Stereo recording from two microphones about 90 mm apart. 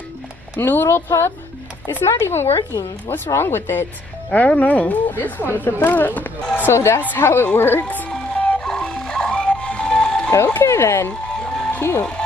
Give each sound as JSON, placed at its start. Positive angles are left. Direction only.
{"t": 0.6, "sound": "a woman's voice", "side_deg": 25}
{"t": 8.1, "sound": "music", "side_deg": 10}
{"t": 10.3, "sound": "speech", "side_deg": 30}
{"t": 11.1, "sound": "music", "side_deg": 10}